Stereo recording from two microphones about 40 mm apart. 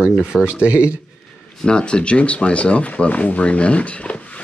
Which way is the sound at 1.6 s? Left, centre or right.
Left.